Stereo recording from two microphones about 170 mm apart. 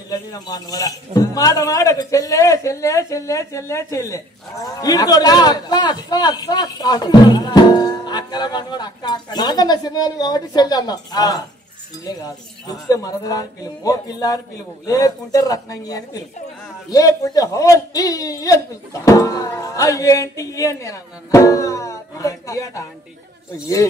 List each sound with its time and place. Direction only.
0.1 s a man's voice: 20° left (ahead or behind)